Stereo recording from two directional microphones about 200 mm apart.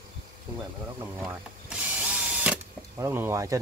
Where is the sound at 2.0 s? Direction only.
5° right (ahead or behind).